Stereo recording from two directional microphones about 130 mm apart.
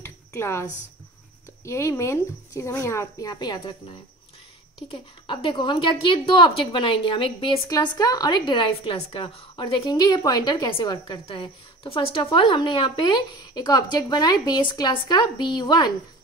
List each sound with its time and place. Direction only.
0.0 s a sound: 20° left (ahead or behind)
1.6 s a woman's voice: 20° left (ahead or behind)
4.9 s a woman's voice: 40° left (ahead or behind)